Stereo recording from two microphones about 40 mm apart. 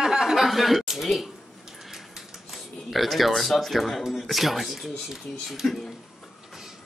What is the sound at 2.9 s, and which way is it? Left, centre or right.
Speech, centre.